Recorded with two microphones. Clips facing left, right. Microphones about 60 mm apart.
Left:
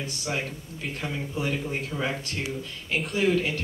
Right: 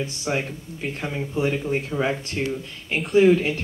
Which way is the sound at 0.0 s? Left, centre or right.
Right.